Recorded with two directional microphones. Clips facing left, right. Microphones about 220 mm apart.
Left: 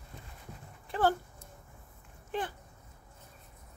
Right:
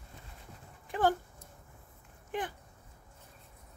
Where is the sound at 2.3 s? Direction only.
15° right (ahead or behind).